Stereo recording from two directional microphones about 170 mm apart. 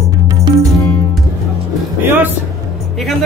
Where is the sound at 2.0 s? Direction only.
10° right (ahead or behind).